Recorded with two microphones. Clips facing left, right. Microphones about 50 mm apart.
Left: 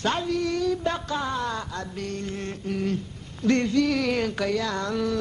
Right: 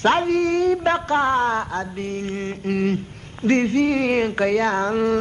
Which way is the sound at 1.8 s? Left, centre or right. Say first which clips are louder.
Right 5 dB; right.